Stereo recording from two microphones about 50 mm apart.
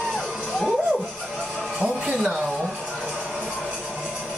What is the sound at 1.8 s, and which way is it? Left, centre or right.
Music, right.